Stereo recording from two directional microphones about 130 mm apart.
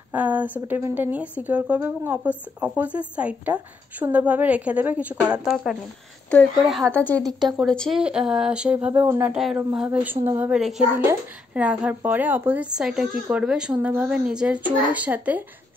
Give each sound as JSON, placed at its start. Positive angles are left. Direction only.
{"t": 0.1, "sound": "speech", "side_deg": -10}
{"t": 6.9, "sound": "a woman's voice", "side_deg": 10}
{"t": 7.2, "sound": "speech", "side_deg": -35}
{"t": 7.5, "sound": "speech", "side_deg": 5}
{"t": 9.3, "sound": "speech", "side_deg": -5}
{"t": 10.2, "sound": "speech", "side_deg": -15}
{"t": 10.5, "sound": "speech", "side_deg": -5}